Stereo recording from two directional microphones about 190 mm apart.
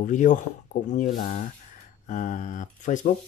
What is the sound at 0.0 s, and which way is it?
Speech, 40° left (ahead or behind).